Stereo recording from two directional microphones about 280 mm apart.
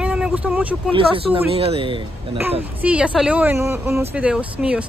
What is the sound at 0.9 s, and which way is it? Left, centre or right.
Speech, centre.